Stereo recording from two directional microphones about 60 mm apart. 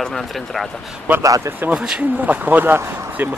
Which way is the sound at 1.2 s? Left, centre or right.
Right.